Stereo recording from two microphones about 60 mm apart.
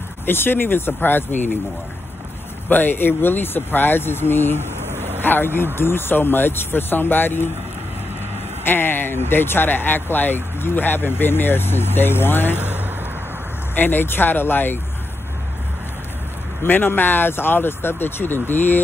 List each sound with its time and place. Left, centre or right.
0.2 s speech: left
2.7 s speech: left
8.6 s speech: left
13.7 s speech: left
16.6 s speech: left